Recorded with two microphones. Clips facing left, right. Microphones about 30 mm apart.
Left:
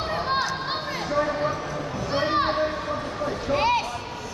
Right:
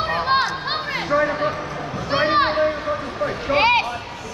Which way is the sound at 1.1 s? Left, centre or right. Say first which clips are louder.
Right 4 dB; right.